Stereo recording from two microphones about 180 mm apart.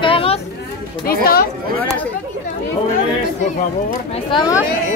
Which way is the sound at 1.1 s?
55° left (ahead or behind).